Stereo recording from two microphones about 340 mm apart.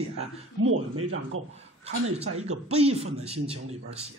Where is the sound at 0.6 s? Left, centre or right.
Right.